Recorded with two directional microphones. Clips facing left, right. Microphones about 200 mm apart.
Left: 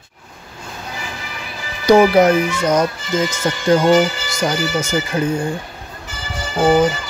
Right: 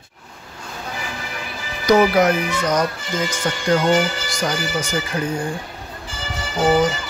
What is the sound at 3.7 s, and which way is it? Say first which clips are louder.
Speech: left 5 dB; 25° left (ahead or behind).